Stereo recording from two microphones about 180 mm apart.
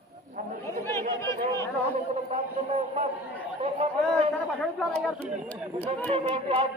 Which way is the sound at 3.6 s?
30° right (ahead or behind).